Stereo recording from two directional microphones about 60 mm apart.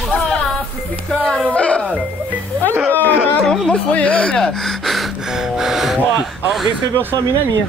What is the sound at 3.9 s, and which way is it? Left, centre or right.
Speech, left.